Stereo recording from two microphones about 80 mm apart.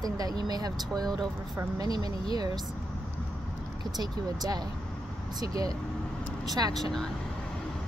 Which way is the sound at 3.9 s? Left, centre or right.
Right.